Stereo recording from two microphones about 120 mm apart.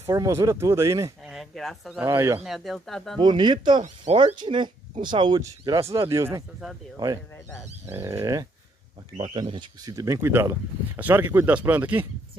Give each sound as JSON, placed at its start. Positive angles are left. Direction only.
{"t": 0.0, "sound": "speech", "side_deg": -25}
{"t": 1.2, "sound": "a sound", "side_deg": 0}
{"t": 2.0, "sound": "speech", "side_deg": -25}
{"t": 2.4, "sound": "speech", "side_deg": 0}
{"t": 3.2, "sound": "speech", "side_deg": -40}
{"t": 3.8, "sound": "speech", "side_deg": -75}
{"t": 4.4, "sound": "speech", "side_deg": -40}
{"t": 7.8, "sound": "speech", "side_deg": -25}
{"t": 9.2, "sound": "speech", "side_deg": -45}
{"t": 9.9, "sound": "speech", "side_deg": -25}